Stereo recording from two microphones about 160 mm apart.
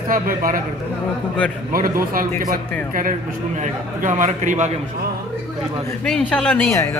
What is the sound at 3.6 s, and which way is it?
A man's voice, 50° right (ahead or behind).